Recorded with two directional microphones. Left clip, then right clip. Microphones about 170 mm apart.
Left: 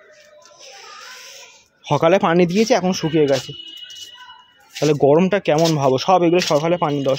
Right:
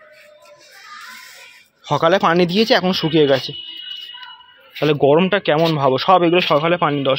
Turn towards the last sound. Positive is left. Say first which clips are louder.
# right 2 dB
turn(degrees=5)  # may be behind; listen again after turning